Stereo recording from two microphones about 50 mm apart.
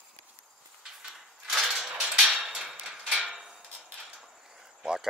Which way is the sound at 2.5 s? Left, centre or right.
Centre.